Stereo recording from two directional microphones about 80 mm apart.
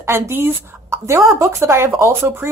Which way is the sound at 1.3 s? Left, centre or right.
Right.